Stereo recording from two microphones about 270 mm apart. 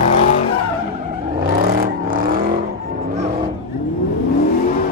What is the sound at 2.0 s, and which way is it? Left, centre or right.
Vehicle, right.